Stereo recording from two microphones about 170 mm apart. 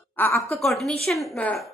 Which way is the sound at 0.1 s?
10° left (ahead or behind).